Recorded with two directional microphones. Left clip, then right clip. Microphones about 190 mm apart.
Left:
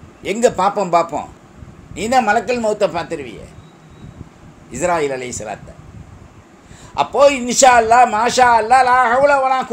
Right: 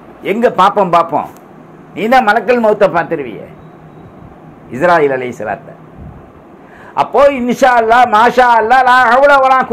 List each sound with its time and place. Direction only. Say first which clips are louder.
0.2 s a man's voice: right 5 dB; 25° left (ahead or behind)
2.0 s a man's voice: right 5 dB; 15° left (ahead or behind)
4.7 s a man's voice: right 8 dB; 20° left (ahead or behind)
7.0 s a man's voice: right 3 dB; 15° left (ahead or behind)